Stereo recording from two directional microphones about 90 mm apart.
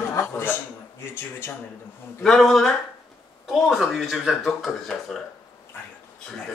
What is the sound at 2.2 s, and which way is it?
Speech, 5° left (ahead or behind).